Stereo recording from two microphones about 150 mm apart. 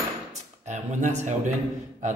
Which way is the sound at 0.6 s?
50° right (ahead or behind).